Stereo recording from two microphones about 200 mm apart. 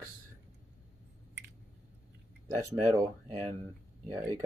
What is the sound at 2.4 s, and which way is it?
Speech, 25° right (ahead or behind).